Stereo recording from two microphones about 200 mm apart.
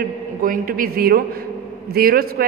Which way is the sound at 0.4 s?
45° right (ahead or behind).